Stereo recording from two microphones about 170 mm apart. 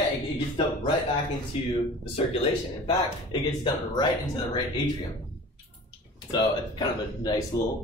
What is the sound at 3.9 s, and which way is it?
Speech, 25° left (ahead or behind).